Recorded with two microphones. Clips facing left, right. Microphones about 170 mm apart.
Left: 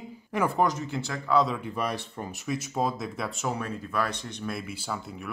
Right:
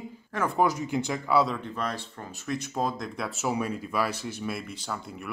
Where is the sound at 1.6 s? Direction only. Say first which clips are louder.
Left 2 dB; 10° left (ahead or behind).